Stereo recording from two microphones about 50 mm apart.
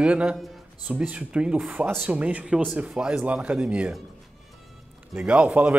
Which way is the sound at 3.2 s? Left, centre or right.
Right.